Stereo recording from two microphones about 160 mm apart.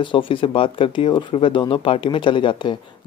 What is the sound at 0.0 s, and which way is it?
Speech, 30° left (ahead or behind).